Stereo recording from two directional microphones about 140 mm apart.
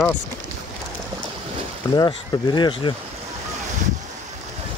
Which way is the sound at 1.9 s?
30° left (ahead or behind).